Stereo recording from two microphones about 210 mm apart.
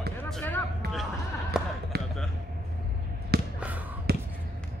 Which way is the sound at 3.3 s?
50° right (ahead or behind).